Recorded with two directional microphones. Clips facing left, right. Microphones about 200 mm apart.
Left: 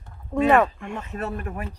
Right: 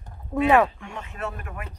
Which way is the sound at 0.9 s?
35° left (ahead or behind).